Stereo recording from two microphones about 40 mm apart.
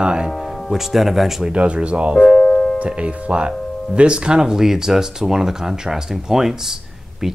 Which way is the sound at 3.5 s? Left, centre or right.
Centre.